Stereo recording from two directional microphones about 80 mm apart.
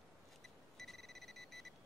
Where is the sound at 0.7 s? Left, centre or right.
Centre.